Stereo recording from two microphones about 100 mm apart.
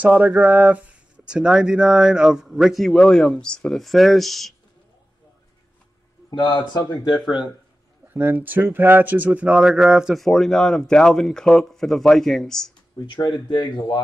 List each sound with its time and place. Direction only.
0.0 s speech: 5° right (ahead or behind)
6.3 s speech: 45° left (ahead or behind)
8.1 s speech: 20° right (ahead or behind); by 12.7 s 5° left (ahead or behind)
13.0 s speech: 50° left (ahead or behind)